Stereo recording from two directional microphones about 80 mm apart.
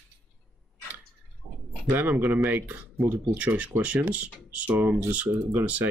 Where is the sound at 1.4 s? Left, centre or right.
Centre.